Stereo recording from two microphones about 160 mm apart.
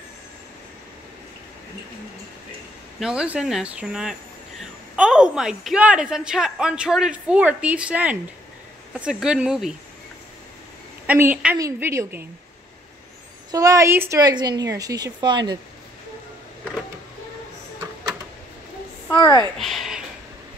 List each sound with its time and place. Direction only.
3.0 s speech: 5° right (ahead or behind)
11.1 s a woman's voice: 10° right (ahead or behind)
13.5 s a woman's voice: 20° right (ahead or behind)
19.0 s a woman's voice: 25° left (ahead or behind)
19.6 s speech: centre (ahead or behind)